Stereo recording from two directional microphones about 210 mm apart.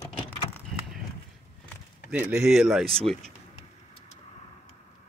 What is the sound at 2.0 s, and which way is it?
Speech, 5° right (ahead or behind).